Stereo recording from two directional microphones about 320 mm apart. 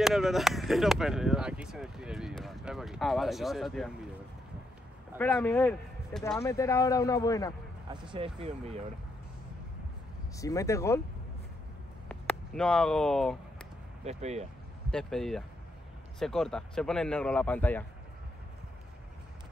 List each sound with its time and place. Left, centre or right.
0.0 s speech: centre
5.1 s speech: centre
7.9 s speech: centre
10.3 s speech: centre
12.1 s a sound: centre
14.0 s speech: centre
14.9 s speech: centre